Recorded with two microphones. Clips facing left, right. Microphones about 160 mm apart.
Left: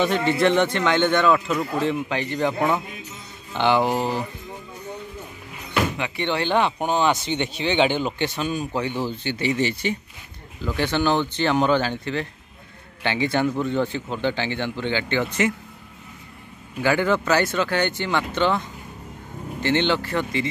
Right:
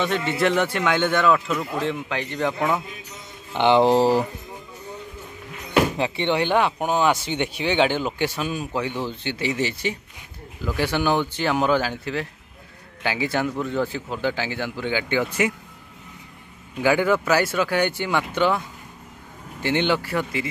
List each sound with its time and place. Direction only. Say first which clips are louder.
0.3 s speech: left 2 dB; centre (ahead or behind)
3.5 s speech: right 4 dB; 20° right (ahead or behind)
5.9 s speech: right 4 dB; 30° right (ahead or behind)
6.2 s speech: even; 15° right (ahead or behind)
16.8 s speech: right 1 dB; 10° right (ahead or behind)